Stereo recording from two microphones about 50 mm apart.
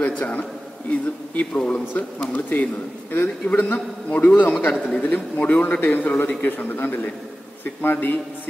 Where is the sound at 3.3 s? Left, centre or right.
Left.